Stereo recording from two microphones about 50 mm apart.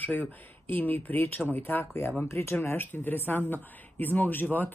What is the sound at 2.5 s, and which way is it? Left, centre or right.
Speech, left.